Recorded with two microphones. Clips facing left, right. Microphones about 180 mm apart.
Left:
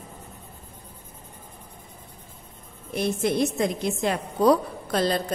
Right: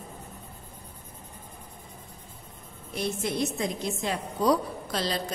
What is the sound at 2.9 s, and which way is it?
A woman's voice, 60° left (ahead or behind).